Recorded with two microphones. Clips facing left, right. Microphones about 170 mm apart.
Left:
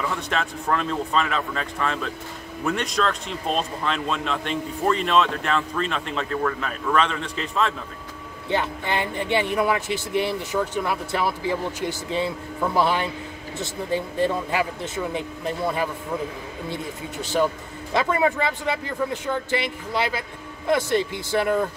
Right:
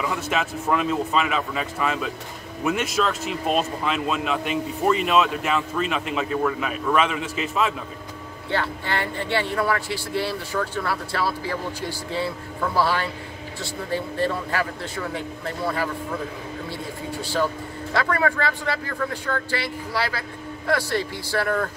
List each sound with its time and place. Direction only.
0.0 s speech: 5° right (ahead or behind)
8.5 s a man's voice: 20° left (ahead or behind)